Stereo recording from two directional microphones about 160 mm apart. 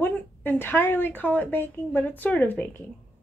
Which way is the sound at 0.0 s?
15° left (ahead or behind).